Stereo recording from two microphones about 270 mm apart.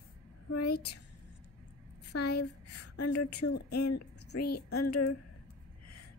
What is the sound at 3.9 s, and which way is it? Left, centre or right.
Speech, left.